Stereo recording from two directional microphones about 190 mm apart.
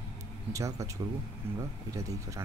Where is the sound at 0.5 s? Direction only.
15° right (ahead or behind).